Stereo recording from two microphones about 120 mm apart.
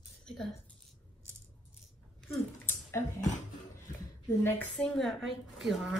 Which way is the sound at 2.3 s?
20° left (ahead or behind).